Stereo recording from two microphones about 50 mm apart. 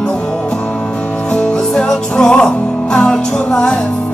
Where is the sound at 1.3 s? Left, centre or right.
Centre.